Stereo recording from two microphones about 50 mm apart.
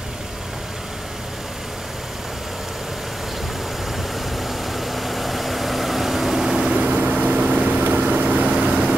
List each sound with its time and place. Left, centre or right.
4.4 s vehicle: centre
6.8 s vehicle: right